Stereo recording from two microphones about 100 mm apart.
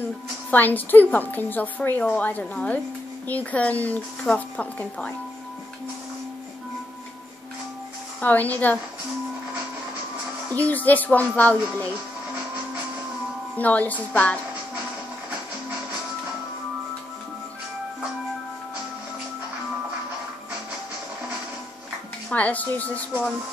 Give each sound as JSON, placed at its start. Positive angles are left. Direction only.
{"t": 0.5, "sound": "a woman's voice", "side_deg": 20}
{"t": 8.2, "sound": "a woman's voice", "side_deg": 15}
{"t": 10.5, "sound": "a woman's voice", "side_deg": 15}
{"t": 13.6, "sound": "a woman's voice", "side_deg": 15}
{"t": 22.3, "sound": "a woman's voice", "side_deg": 15}